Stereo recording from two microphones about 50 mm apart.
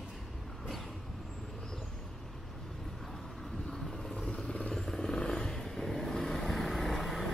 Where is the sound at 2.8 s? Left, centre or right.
Centre; by 4.7 s left.